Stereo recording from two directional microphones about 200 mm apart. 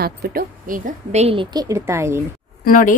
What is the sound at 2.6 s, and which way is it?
Speech, 40° left (ahead or behind).